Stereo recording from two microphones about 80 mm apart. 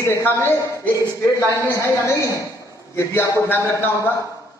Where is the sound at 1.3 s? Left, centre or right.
Left.